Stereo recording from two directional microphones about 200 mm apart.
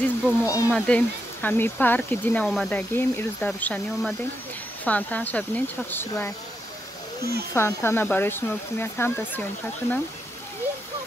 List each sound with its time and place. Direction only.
0.0 s speech: 15° left (ahead or behind)
0.7 s speech: 5° left (ahead or behind)
7.5 s speech: 10° left (ahead or behind)